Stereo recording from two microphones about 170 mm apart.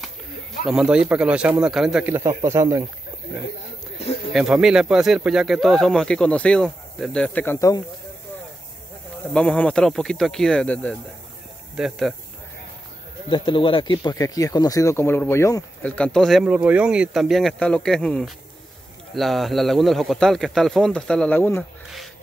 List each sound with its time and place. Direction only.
0.7 s a man's voice: 5° right (ahead or behind)
4.3 s speech: centre (ahead or behind); by 7.8 s 20° left (ahead or behind)
9.3 s speech: 5° left (ahead or behind)
13.3 s speech: 30° left (ahead or behind); by 21.6 s 10° left (ahead or behind)